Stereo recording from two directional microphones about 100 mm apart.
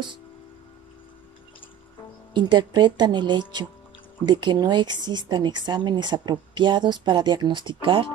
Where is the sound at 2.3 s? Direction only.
45° right (ahead or behind).